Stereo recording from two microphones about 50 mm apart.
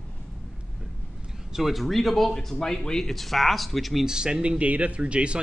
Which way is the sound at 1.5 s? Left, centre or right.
Centre.